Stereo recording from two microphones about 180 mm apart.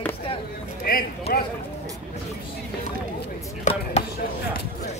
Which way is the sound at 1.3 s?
35° left (ahead or behind).